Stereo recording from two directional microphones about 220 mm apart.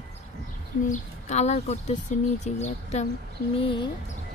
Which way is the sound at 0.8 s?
35° left (ahead or behind).